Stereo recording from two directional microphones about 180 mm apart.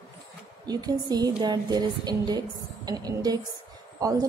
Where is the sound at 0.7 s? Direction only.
20° right (ahead or behind).